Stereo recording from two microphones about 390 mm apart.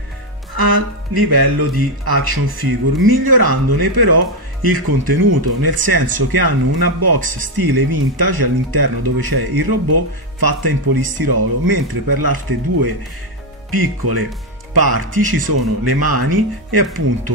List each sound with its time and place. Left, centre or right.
0.6 s speech: right